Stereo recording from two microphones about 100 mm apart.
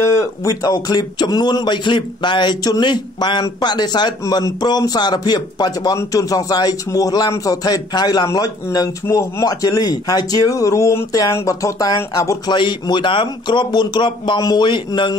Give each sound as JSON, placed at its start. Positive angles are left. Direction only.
{"t": 0.2, "sound": "speech", "side_deg": 35}
{"t": 4.2, "sound": "a man's voice", "side_deg": 35}
{"t": 12.4, "sound": "speech", "side_deg": 50}